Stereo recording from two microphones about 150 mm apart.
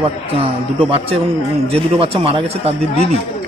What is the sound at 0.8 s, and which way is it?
A man's voice, 40° right (ahead or behind).